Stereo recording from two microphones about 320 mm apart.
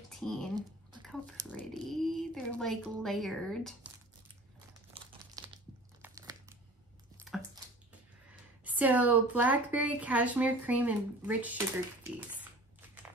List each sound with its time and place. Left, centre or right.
0.1 s a sound: centre
1.5 s a woman's voice: centre
5.0 s crumpling: centre
5.4 s crunch: centre
6.0 s crumpling: centre
8.6 s a woman's voice: centre